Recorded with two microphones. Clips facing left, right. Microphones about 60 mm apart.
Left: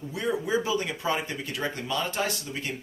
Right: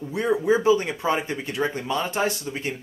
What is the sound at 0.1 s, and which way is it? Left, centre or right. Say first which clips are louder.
Speech: right 6 dB; right.